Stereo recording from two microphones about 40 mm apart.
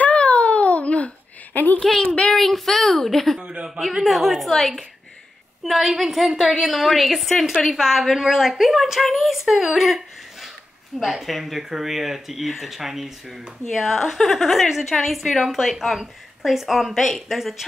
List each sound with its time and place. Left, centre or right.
0.0 s a sound: left
1.5 s speech: left
1.8 s a woman's voice: centre
3.3 s a woman's voice: right
4.0 s a woman's voice: centre
9.0 s speech: centre
13.7 s a woman's voice: centre
16.9 s speech: centre